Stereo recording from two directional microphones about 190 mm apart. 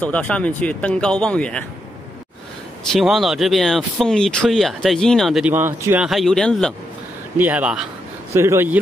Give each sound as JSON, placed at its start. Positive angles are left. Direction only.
{"t": 0.0, "sound": "speech", "side_deg": 10}
{"t": 2.9, "sound": "speech", "side_deg": 0}
{"t": 5.5, "sound": "speech", "side_deg": -10}
{"t": 6.0, "sound": "speech", "side_deg": 0}
{"t": 7.3, "sound": "speech", "side_deg": -10}